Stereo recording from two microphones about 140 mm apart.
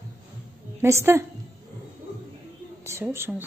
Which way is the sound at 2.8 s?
20° right (ahead or behind).